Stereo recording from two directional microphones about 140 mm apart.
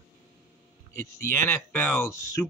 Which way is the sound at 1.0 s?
15° left (ahead or behind).